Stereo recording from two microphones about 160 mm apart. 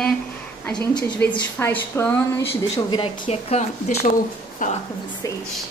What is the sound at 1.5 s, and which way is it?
Speech, 15° left (ahead or behind).